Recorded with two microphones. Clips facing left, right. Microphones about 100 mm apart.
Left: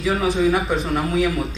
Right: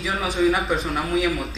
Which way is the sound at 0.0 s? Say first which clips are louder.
Left 3 dB; centre (ahead or behind).